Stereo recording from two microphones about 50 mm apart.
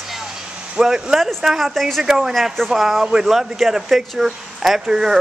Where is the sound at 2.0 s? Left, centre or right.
Centre.